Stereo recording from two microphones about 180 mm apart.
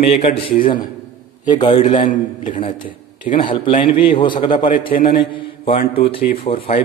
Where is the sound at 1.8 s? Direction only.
35° left (ahead or behind).